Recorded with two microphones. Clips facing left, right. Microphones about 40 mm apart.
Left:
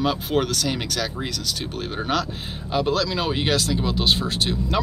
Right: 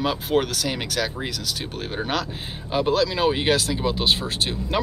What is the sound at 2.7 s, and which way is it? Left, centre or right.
Speech, centre.